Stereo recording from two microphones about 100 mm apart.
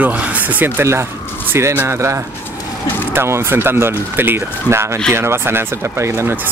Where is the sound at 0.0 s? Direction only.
15° right (ahead or behind).